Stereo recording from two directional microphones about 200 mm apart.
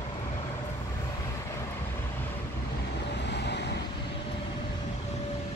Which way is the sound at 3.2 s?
60° left (ahead or behind).